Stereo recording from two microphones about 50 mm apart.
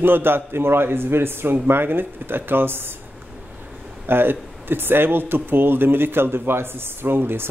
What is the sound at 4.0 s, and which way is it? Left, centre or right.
Speech, right.